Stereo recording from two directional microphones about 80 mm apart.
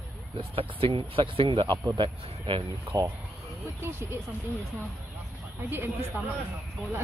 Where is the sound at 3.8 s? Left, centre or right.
Right.